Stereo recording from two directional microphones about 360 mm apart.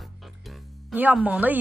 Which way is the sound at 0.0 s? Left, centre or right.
Centre.